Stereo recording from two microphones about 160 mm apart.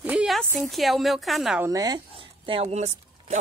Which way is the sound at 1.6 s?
25° right (ahead or behind).